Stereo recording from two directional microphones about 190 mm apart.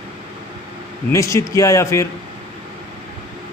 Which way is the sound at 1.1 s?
15° left (ahead or behind).